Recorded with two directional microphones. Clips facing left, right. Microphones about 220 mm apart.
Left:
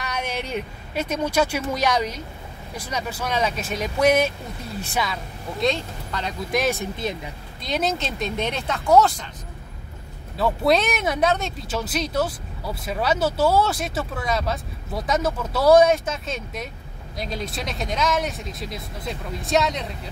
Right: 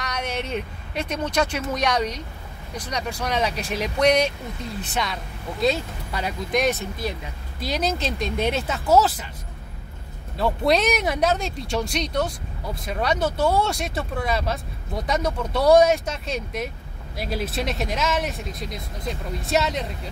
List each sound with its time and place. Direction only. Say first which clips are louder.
0.0 s speech: even; 5° left (ahead or behind)
6.5 s speech: right 1 dB; 5° left (ahead or behind)
6.8 s speech: left 2 dB; 20° left (ahead or behind)
7.6 s speech: even; centre (ahead or behind)
10.3 s speech: left 1 dB; centre (ahead or behind)